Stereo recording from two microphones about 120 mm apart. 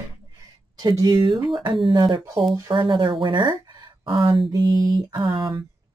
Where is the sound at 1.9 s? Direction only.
40° right (ahead or behind).